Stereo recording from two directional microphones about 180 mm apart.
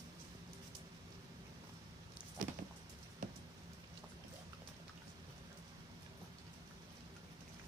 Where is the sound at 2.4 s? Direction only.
45° right (ahead or behind).